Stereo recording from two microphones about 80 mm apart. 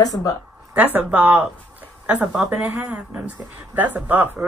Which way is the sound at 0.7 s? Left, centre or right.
Centre.